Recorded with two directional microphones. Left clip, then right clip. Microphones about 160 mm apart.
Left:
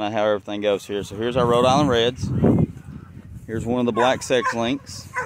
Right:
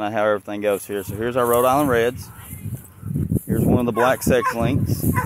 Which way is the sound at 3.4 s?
Centre (ahead or behind).